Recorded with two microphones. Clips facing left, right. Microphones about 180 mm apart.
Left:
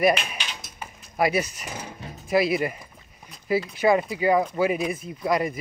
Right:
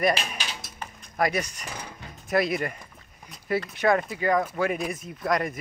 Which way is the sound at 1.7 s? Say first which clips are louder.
Left 3 dB; 25° left (ahead or behind).